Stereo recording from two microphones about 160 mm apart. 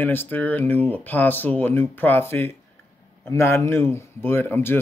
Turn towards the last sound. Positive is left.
turn(degrees=15)  # may be behind; listen again after turning